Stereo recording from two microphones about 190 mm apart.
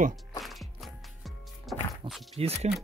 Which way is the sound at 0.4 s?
Centre (ahead or behind).